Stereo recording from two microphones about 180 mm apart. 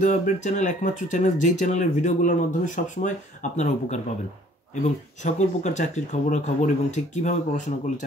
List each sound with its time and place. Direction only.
0.0 s speech: 45° left (ahead or behind)
5.2 s speech: 40° left (ahead or behind)